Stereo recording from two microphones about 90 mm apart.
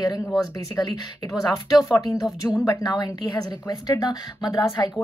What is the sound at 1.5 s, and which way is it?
A woman's voice, 40° left (ahead or behind).